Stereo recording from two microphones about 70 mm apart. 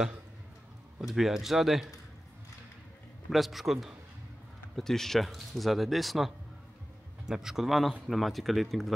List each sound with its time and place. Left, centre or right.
1.0 s speech: centre
3.3 s speech: centre